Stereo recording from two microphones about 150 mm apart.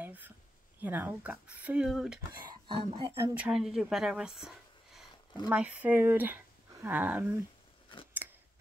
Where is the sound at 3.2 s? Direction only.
15° right (ahead or behind).